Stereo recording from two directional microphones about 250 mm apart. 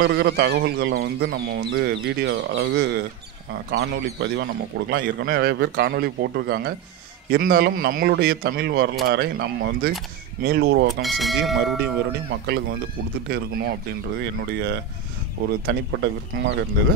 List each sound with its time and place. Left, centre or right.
0.0 s a man's voice: right
11.0 s speech: centre
11.8 s a man's voice: right
14.2 s a man's voice: right